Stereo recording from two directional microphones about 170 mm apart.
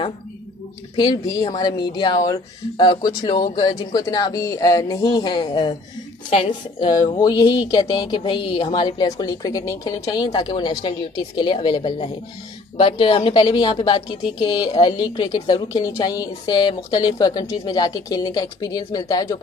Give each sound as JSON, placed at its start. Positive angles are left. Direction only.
{"t": 0.9, "sound": "a woman's voice", "side_deg": 25}